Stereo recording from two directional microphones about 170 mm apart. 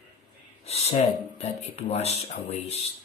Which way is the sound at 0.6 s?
40° left (ahead or behind).